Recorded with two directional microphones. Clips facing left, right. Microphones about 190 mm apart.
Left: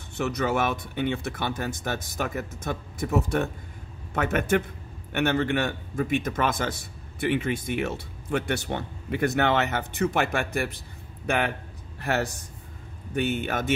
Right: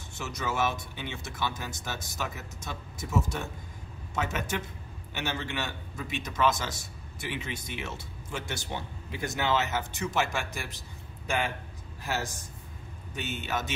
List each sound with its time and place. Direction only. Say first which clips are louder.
0.2 s a man's voice: left 6 dB; 60° left (ahead or behind)